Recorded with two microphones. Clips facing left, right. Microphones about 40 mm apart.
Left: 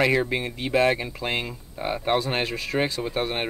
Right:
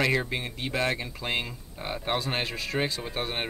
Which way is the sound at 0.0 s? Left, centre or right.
Centre.